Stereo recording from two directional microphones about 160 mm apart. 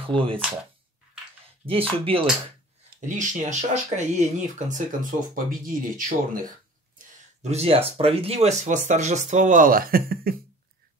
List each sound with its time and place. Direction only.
0.0 s speech: 35° right (ahead or behind)
1.7 s speech: 35° right (ahead or behind)
3.1 s speech: 50° right (ahead or behind)
5.3 s speech: 60° right (ahead or behind)
7.4 s speech: 40° right (ahead or behind); by 10.3 s 70° right (ahead or behind)